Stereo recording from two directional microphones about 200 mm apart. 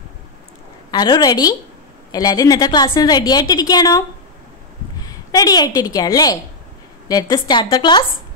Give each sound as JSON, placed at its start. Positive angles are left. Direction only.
{"t": 0.9, "sound": "a woman's voice", "side_deg": 20}
{"t": 5.0, "sound": "a woman's voice", "side_deg": 20}